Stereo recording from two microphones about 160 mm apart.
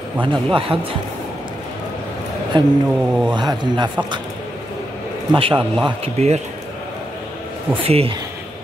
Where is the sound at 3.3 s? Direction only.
30° right (ahead or behind).